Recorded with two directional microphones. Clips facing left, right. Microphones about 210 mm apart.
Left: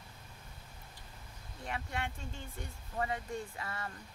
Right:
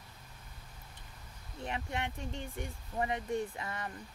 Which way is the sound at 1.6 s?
20° right (ahead or behind).